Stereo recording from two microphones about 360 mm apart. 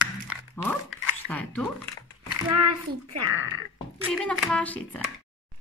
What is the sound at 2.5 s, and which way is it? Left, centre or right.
Speech, right.